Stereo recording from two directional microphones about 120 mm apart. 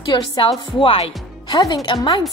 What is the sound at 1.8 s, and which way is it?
Speech, 40° left (ahead or behind).